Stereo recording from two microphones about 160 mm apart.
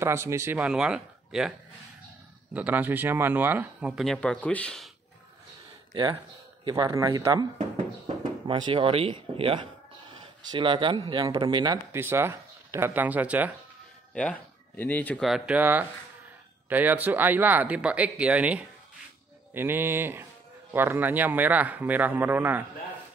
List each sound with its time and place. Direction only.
0.0 s a man's voice: 15° right (ahead or behind)
0.6 s speech: 5° right (ahead or behind)
2.5 s a man's voice: 10° right (ahead or behind)
6.6 s speech: 25° right (ahead or behind)
8.5 s speech: 30° right (ahead or behind)
11.9 s speech: 15° right (ahead or behind)
14.1 s speech: 10° left (ahead or behind)
15.2 s a man's voice: 5° right (ahead or behind)